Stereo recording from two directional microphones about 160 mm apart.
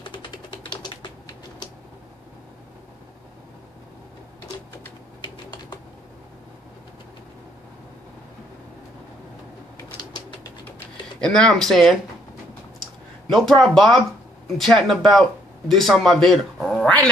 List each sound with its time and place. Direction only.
0.0 s typing: 30° left (ahead or behind)
5.2 s typing: 25° left (ahead or behind)
11.1 s speech: 5° left (ahead or behind)
13.3 s speech: centre (ahead or behind)